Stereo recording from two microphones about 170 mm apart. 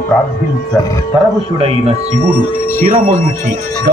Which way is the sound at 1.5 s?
35° right (ahead or behind).